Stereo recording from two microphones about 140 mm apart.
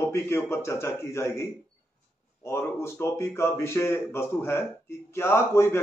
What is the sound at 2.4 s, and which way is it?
A man's voice, 20° left (ahead or behind).